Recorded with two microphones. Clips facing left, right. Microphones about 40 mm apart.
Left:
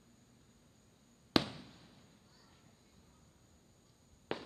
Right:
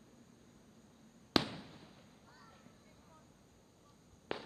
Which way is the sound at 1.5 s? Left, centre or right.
Centre.